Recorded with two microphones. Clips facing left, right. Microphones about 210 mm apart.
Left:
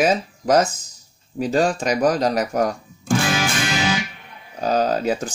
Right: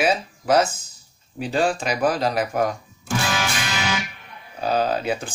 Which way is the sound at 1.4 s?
40° left (ahead or behind).